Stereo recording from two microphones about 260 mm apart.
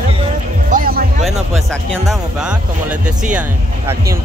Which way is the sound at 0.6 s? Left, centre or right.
Right.